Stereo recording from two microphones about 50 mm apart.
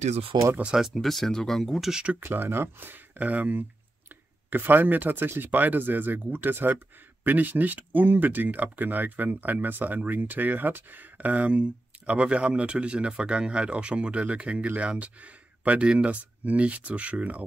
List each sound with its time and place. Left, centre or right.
0.7 s speech: centre
1.0 s speech: centre
2.2 s speech: right